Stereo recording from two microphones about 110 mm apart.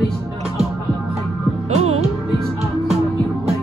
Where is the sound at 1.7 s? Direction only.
75° right (ahead or behind).